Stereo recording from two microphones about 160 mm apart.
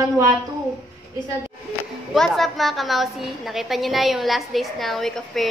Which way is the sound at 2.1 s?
Centre (ahead or behind).